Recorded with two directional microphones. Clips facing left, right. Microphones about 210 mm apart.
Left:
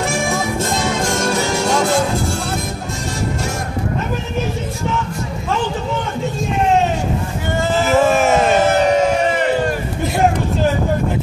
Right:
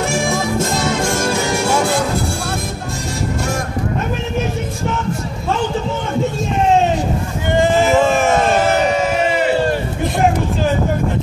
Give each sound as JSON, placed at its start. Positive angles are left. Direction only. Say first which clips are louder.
{"t": 7.5, "sound": "boat", "louder": "right 5 dB", "side_deg": -15}